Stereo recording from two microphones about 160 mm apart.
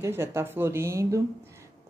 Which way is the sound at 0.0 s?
15° right (ahead or behind).